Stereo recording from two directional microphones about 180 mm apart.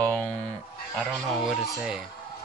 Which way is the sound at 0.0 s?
5° left (ahead or behind).